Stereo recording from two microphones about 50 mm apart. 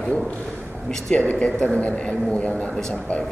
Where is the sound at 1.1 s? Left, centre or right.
Left.